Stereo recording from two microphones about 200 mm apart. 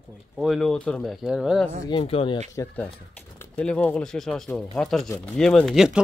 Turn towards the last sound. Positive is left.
turn(degrees=-5)  # may be behind; listen again after turning